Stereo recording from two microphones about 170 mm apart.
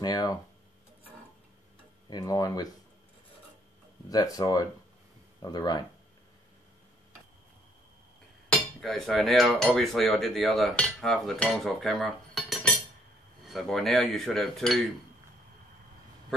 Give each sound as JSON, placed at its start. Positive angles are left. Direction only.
{"t": 0.0, "sound": "speech", "side_deg": 25}
{"t": 2.0, "sound": "speech", "side_deg": 20}
{"t": 4.1, "sound": "speech", "side_deg": 20}
{"t": 8.5, "sound": "cutlery", "side_deg": 0}